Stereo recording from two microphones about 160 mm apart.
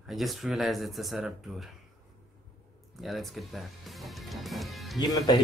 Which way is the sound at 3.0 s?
Centre (ahead or behind).